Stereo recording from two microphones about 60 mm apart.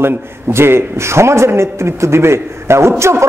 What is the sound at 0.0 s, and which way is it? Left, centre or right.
A man's voice, right.